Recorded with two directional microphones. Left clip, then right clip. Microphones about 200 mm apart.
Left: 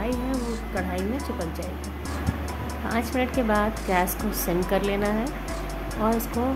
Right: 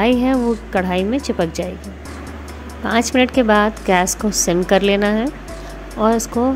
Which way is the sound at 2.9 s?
40° right (ahead or behind).